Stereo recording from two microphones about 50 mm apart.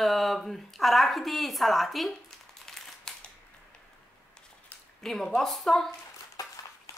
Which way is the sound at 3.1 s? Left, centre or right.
Centre.